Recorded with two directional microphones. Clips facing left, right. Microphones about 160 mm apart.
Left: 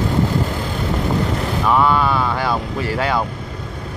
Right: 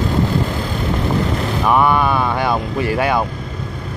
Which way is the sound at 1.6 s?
15° right (ahead or behind).